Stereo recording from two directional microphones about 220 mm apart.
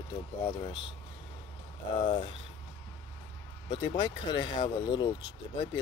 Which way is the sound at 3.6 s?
20° left (ahead or behind).